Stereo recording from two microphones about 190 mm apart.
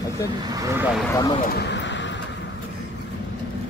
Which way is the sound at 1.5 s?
70° left (ahead or behind).